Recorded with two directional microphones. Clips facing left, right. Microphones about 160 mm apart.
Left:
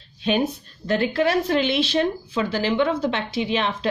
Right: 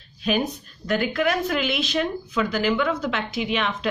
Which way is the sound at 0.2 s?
30° left (ahead or behind).